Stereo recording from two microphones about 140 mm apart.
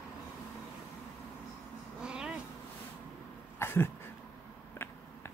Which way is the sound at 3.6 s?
15° left (ahead or behind).